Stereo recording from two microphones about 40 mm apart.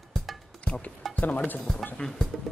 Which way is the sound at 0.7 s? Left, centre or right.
Left.